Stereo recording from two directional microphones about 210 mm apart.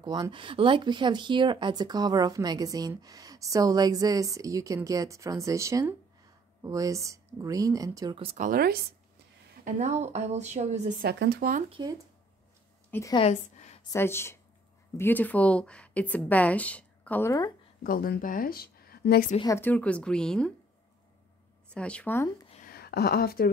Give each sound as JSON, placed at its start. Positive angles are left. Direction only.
{"t": 0.0, "sound": "speech", "side_deg": -20}
{"t": 8.5, "sound": "speech", "side_deg": -45}
{"t": 9.7, "sound": "speech", "side_deg": -35}
{"t": 11.7, "sound": "speech", "side_deg": -20}
{"t": 12.9, "sound": "a woman's voice", "side_deg": 15}
{"t": 13.2, "sound": "a woman's voice", "side_deg": 35}
{"t": 13.8, "sound": "a woman's voice", "side_deg": 10}
{"t": 17.8, "sound": "a woman's voice", "side_deg": 45}
{"t": 19.4, "sound": "a woman's voice", "side_deg": 10}
{"t": 21.7, "sound": "a woman's voice", "side_deg": 5}
{"t": 22.7, "sound": "a woman's voice", "side_deg": 50}